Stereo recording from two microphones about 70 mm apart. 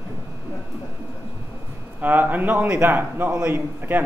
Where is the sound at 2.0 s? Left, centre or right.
Right.